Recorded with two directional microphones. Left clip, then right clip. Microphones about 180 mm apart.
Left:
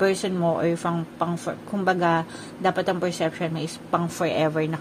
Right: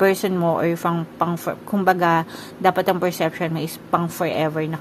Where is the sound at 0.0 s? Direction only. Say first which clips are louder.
Right 4 dB; 20° right (ahead or behind).